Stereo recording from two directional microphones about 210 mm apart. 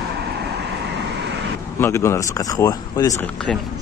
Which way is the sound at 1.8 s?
15° left (ahead or behind).